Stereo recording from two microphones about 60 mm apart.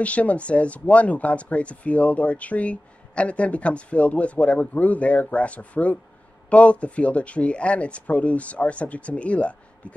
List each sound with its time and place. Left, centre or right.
0.0 s speech: left